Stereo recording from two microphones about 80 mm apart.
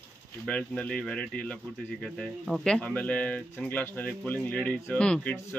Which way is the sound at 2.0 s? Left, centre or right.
Centre.